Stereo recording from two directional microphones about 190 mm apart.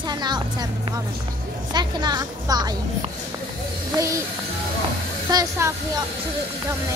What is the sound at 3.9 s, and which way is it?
Speech, 15° right (ahead or behind).